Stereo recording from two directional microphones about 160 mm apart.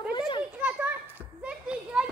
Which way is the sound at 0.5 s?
10° right (ahead or behind).